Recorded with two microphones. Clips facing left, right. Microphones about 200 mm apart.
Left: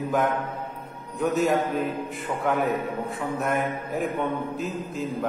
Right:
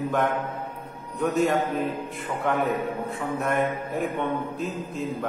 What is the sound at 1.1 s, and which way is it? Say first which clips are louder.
Speech: even; centre (ahead or behind).